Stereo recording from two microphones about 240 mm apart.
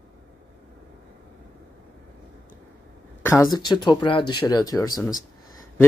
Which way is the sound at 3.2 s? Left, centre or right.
Centre.